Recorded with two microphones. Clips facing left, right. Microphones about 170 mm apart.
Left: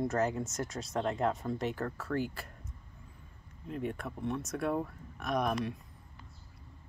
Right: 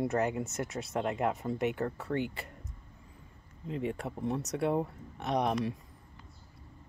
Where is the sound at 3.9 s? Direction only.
35° right (ahead or behind).